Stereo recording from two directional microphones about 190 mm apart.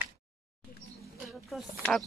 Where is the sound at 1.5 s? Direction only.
Centre (ahead or behind).